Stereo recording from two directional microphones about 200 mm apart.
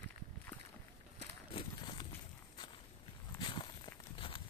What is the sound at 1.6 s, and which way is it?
Run, 20° left (ahead or behind).